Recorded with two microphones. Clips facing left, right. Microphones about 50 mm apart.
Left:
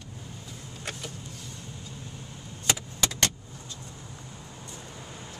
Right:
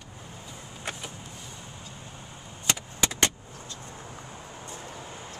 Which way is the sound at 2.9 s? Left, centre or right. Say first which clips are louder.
Right 5 dB; centre.